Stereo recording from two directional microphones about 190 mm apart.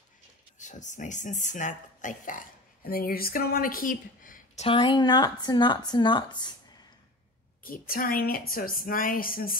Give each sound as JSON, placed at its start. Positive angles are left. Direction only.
{"t": 0.6, "sound": "speech", "side_deg": 40}
{"t": 4.6, "sound": "speech", "side_deg": 25}
{"t": 7.6, "sound": "a woman's voice", "side_deg": 50}